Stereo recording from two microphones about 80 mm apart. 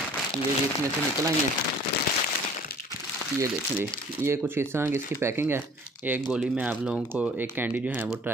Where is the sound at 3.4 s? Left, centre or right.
Right.